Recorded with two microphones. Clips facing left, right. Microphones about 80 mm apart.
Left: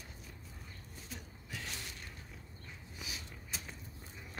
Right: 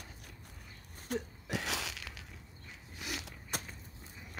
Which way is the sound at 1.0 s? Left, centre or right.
Right.